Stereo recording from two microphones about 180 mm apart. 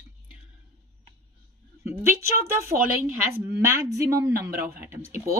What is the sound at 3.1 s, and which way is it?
Speech, 15° right (ahead or behind).